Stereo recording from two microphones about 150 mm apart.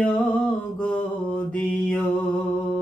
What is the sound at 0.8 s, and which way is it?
Mantra, 10° left (ahead or behind).